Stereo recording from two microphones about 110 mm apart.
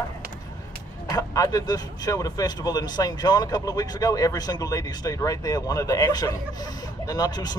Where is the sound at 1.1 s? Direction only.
35° left (ahead or behind).